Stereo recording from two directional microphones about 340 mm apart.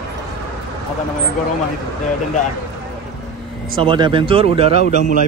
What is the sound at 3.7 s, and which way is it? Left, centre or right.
A man's voice, centre.